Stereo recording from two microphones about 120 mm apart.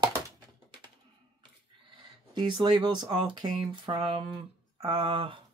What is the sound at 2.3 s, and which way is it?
Speech, 40° right (ahead or behind).